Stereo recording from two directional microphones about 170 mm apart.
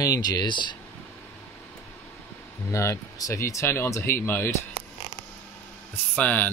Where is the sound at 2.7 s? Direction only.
15° left (ahead or behind).